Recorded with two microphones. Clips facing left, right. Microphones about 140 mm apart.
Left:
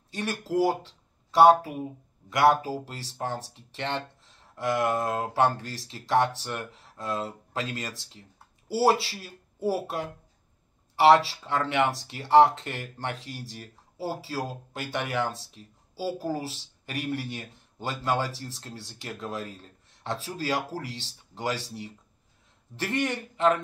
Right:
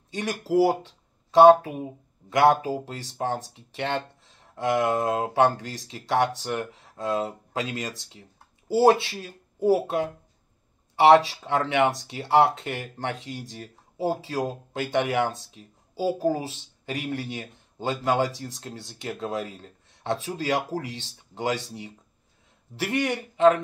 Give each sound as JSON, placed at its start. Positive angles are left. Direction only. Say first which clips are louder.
{"t": 0.1, "sound": "speech", "louder": "right 4 dB", "side_deg": -15}